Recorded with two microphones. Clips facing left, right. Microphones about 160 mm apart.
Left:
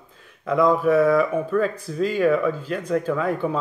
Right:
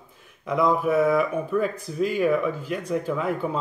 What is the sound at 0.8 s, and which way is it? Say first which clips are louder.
Speech: left 3 dB; 10° right (ahead or behind).